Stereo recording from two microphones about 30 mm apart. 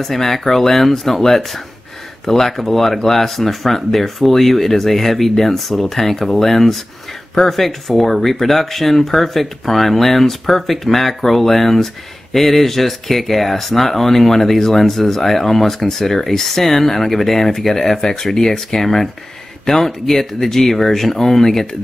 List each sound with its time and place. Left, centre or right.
0.0 s speech: centre